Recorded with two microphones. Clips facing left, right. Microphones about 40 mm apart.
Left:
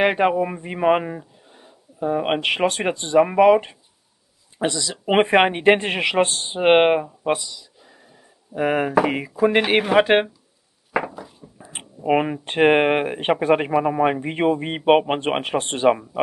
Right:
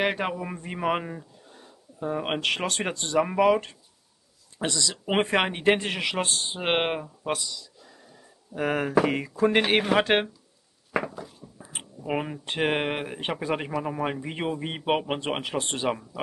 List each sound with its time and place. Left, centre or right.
0.0 s speech: left
10.9 s a sound: centre
11.5 s speech: left